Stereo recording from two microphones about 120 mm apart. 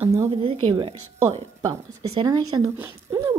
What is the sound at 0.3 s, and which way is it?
Speech, 50° right (ahead or behind).